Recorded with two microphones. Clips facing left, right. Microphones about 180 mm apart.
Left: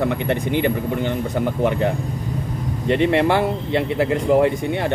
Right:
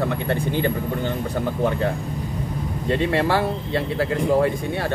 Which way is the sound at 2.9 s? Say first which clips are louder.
Left 4 dB; 20° left (ahead or behind).